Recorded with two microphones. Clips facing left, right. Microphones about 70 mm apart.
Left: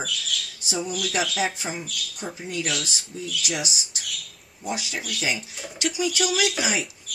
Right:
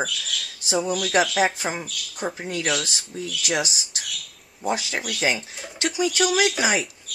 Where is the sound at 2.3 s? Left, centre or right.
Right.